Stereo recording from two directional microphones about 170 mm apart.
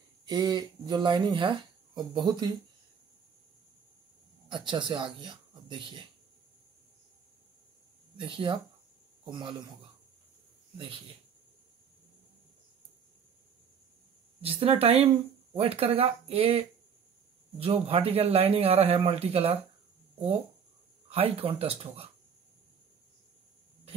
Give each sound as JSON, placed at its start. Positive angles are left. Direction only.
{"t": 0.2, "sound": "speech", "side_deg": -25}
{"t": 4.5, "sound": "speech", "side_deg": -30}
{"t": 8.2, "sound": "speech", "side_deg": -30}
{"t": 14.4, "sound": "speech", "side_deg": -35}
{"t": 21.1, "sound": "speech", "side_deg": -35}